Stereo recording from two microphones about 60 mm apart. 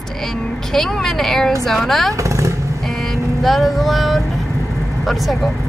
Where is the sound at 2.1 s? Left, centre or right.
Right.